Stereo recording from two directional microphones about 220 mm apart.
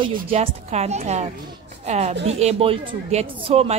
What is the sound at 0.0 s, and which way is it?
A woman's voice, 25° right (ahead or behind).